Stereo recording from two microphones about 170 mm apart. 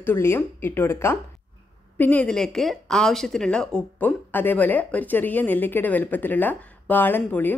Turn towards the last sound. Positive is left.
turn(degrees=10)  # may be behind; listen again after turning